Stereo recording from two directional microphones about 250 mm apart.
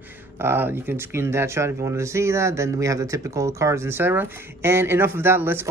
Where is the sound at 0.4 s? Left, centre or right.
Centre.